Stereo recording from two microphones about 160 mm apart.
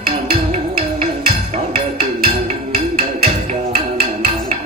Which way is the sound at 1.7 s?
35° right (ahead or behind).